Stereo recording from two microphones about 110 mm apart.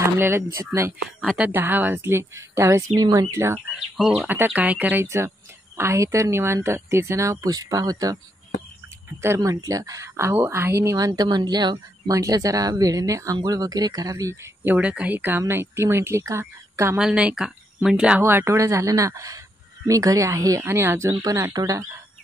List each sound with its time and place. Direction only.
0.0 s speech: 20° right (ahead or behind)
1.0 s speech: centre (ahead or behind)
1.4 s a woman's voice: 20° right (ahead or behind)
3.9 s speech: 5° right (ahead or behind)
4.3 s a woman's voice: 15° right (ahead or behind); by 8.2 s 35° right (ahead or behind)
9.2 s speech: 25° right (ahead or behind)
14.6 s a woman's voice: 15° right (ahead or behind)
17.0 s speech: 10° right (ahead or behind)
18.2 s a woman's voice: 20° right (ahead or behind)
21.1 s speech: 35° right (ahead or behind)